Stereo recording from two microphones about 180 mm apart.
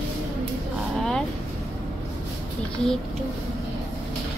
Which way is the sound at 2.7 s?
5° left (ahead or behind).